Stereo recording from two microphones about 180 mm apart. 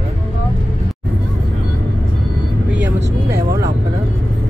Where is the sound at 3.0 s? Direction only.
60° right (ahead or behind).